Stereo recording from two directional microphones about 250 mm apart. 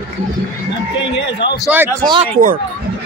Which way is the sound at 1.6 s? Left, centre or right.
Centre.